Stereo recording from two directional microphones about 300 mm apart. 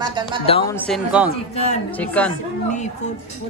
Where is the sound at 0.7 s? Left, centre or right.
Centre.